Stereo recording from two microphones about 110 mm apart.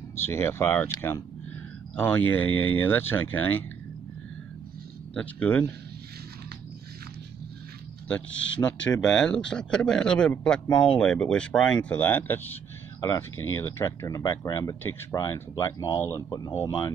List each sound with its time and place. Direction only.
0.1 s speech: 20° left (ahead or behind)
2.0 s speech: 20° left (ahead or behind)
5.1 s speech: 15° left (ahead or behind)
8.1 s speech: 10° left (ahead or behind)
16.3 s speech: 35° left (ahead or behind)